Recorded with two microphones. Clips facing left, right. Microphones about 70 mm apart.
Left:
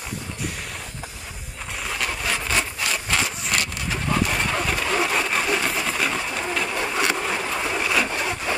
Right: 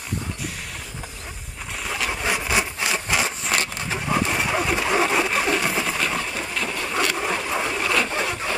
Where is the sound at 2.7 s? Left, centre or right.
Right.